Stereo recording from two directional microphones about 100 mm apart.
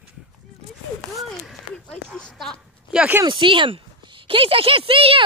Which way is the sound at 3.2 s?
55° right (ahead or behind).